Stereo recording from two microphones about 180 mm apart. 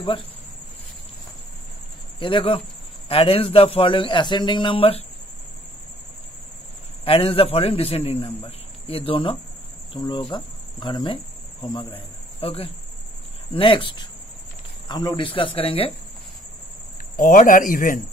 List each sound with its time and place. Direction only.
2.1 s cricket: 30° left (ahead or behind)
3.1 s a man's voice: 30° left (ahead or behind)
7.1 s a man's voice: 30° left (ahead or behind)
9.9 s cricket: 25° left (ahead or behind)
11.6 s speech: 25° left (ahead or behind)
13.5 s cricket: 30° left (ahead or behind)
17.2 s a man's voice: 50° left (ahead or behind)